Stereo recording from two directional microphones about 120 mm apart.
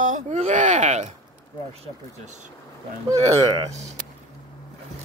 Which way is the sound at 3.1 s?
30° right (ahead or behind).